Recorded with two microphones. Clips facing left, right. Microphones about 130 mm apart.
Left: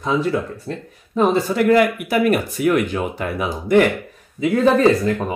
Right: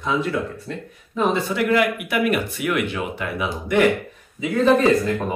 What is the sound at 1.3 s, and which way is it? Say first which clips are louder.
Speech: left 6 dB; 40° left (ahead or behind).